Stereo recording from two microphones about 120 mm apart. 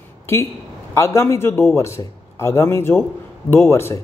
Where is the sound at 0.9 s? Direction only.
25° left (ahead or behind).